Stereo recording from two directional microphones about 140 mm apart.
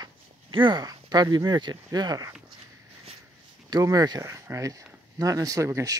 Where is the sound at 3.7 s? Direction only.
25° right (ahead or behind).